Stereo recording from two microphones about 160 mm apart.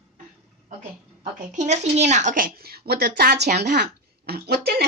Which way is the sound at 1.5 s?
45° right (ahead or behind).